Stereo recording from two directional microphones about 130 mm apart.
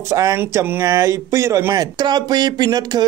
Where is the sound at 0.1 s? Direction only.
25° right (ahead or behind).